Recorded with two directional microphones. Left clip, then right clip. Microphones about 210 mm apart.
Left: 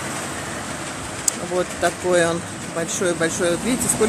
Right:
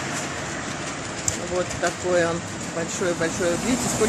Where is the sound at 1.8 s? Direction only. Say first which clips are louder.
Left 4 dB; 55° left (ahead or behind).